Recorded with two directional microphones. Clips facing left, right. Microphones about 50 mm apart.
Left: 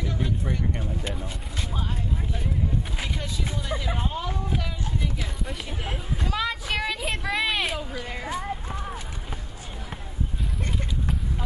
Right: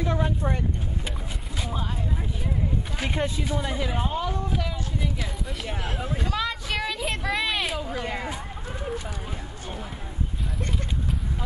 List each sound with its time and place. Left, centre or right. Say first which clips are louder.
0.0 s vehicle: right 3 dB; right
1.6 s speech: right 2 dB; centre
3.2 s speech: right 7 dB; right
3.6 s speech: right 2 dB; centre
6.2 s a sound: left 3 dB; centre
8.1 s speech: right 1 dB; centre